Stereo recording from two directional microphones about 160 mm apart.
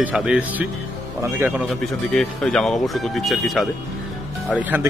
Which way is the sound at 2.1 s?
5° left (ahead or behind).